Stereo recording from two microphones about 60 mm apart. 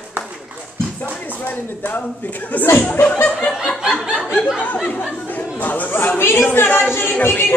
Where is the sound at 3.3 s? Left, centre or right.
Centre.